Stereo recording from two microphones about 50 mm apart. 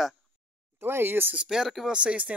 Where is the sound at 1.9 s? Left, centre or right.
Right.